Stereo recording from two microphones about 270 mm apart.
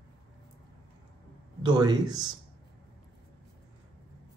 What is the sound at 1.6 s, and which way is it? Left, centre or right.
Speech, centre.